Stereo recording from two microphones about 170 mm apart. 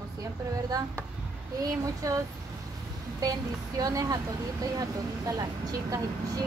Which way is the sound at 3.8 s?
20° right (ahead or behind).